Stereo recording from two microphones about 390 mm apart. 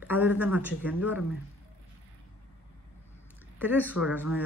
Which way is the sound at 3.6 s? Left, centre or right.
Centre.